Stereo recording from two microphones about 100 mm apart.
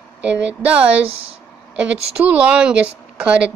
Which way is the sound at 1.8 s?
10° right (ahead or behind).